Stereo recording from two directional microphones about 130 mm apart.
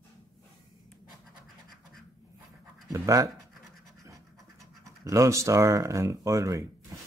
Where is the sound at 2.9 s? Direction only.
25° right (ahead or behind).